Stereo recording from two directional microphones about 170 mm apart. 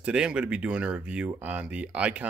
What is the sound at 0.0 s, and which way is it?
Speech, 5° right (ahead or behind).